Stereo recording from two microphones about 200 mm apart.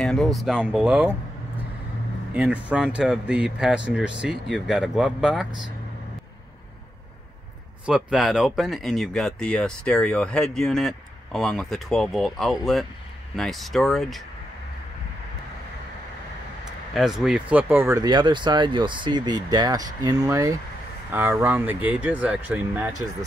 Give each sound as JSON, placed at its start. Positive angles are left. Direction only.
{"t": 0.0, "sound": "speech", "side_deg": 0}
{"t": 2.3, "sound": "speech", "side_deg": -5}
{"t": 7.8, "sound": "speech", "side_deg": -5}
{"t": 16.9, "sound": "speech", "side_deg": 0}